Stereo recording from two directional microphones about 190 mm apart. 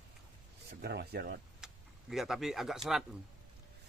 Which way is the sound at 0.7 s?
60° right (ahead or behind).